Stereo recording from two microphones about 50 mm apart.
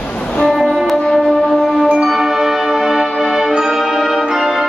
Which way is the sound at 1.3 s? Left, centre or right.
Centre.